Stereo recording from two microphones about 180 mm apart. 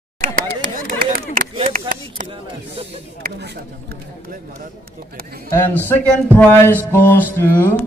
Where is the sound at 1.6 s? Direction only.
45° right (ahead or behind).